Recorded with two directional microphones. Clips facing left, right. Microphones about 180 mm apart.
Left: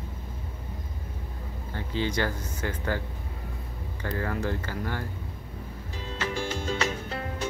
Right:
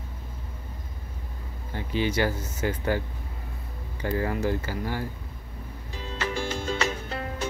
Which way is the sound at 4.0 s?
10° right (ahead or behind).